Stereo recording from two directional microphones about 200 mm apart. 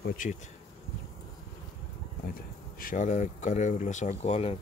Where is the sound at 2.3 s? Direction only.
45° left (ahead or behind).